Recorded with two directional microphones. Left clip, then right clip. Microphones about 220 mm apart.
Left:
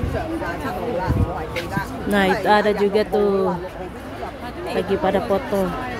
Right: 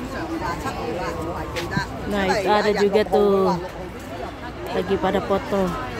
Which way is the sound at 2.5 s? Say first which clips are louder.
Left 1 dB; 5° left (ahead or behind).